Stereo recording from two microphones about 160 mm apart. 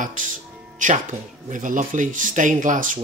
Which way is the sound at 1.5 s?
55° right (ahead or behind).